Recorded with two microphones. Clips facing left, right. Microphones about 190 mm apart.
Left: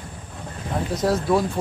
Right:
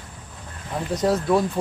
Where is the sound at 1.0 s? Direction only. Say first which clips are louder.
Right 1 dB; centre (ahead or behind).